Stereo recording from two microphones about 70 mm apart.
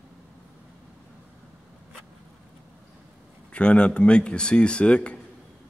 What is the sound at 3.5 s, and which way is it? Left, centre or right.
Speech, centre.